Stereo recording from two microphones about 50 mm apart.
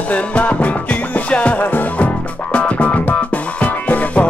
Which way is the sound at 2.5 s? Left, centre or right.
Left.